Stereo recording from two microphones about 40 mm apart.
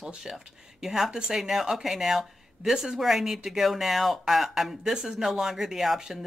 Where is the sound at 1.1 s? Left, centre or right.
Centre.